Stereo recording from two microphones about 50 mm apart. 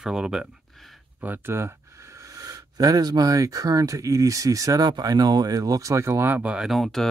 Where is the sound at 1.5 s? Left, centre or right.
Right.